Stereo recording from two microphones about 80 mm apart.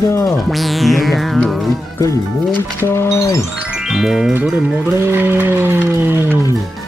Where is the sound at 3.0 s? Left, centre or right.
Left.